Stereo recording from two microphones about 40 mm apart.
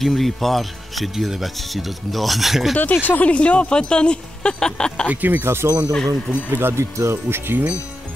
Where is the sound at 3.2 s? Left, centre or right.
Left.